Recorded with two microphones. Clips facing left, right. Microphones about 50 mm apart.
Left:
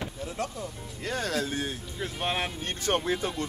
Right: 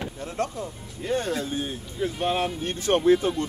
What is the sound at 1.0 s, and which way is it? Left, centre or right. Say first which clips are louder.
Speech: right 3 dB; left.